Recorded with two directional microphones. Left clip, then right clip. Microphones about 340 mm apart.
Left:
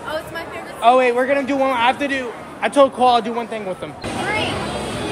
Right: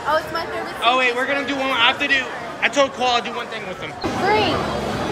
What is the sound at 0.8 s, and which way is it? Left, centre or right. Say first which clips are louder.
A man's voice: left 4 dB; centre.